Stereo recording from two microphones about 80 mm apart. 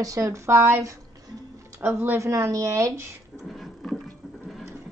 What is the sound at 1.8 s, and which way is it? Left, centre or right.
Speech, right.